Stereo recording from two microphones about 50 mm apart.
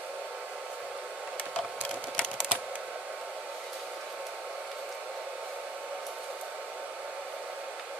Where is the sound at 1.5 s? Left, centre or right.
Centre.